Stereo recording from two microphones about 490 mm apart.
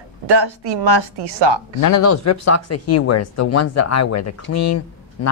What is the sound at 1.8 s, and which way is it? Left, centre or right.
Speech, left.